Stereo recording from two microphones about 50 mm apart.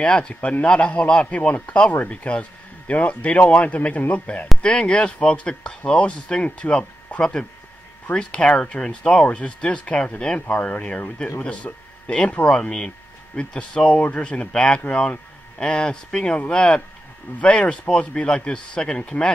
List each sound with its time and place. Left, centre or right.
0.0 s a man's voice: centre
4.6 s a man's voice: centre